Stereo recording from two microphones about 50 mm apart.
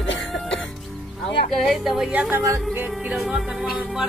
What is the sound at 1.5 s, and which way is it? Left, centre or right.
Speech, centre.